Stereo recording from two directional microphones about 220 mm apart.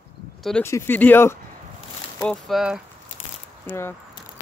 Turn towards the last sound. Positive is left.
turn(degrees=10)  # may be behind; listen again after turning